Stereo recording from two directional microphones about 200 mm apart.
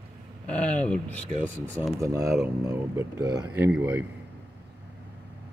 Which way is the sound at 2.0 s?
15° right (ahead or behind).